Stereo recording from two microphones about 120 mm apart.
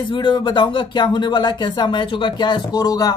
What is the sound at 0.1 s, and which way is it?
Speech, 45° left (ahead or behind).